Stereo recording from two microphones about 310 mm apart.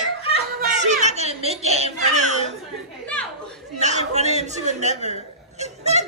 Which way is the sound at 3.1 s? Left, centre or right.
Centre.